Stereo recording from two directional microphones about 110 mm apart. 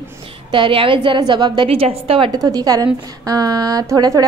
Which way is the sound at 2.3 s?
35° right (ahead or behind).